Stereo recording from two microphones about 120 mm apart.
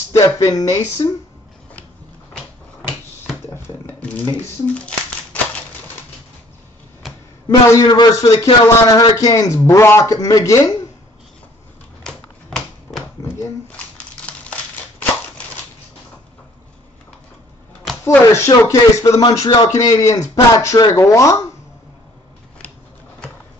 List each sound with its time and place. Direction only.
0.1 s speech: 25° left (ahead or behind)
3.6 s a sound: 15° left (ahead or behind)
7.4 s a man's voice: 35° left (ahead or behind)
12.0 s typewriter: 5° left (ahead or behind)
13.7 s crumpling: 10° left (ahead or behind)
18.0 s speech: 20° left (ahead or behind)